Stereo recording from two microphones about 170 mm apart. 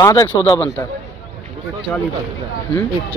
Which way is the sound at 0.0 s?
20° left (ahead or behind).